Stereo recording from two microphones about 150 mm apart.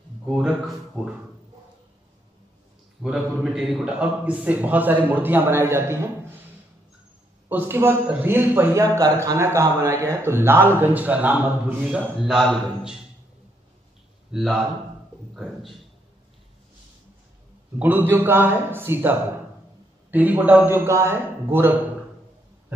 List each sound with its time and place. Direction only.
0.3 s speech: centre (ahead or behind)
3.0 s a man's voice: 5° right (ahead or behind)
7.4 s a man's voice: 15° right (ahead or behind)
14.3 s speech: centre (ahead or behind)
17.7 s a man's voice: 10° right (ahead or behind)